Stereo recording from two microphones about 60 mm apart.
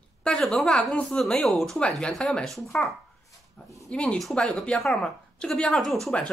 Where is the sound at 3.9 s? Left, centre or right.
Centre.